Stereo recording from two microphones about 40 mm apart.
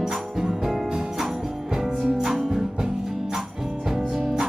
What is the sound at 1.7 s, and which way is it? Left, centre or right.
Music, centre.